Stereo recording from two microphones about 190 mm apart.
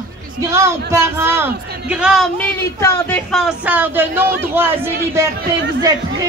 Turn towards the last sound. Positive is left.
turn(degrees=-70)  # may be behind; listen again after turning